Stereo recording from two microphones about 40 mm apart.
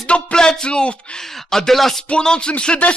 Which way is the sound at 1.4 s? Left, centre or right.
Centre.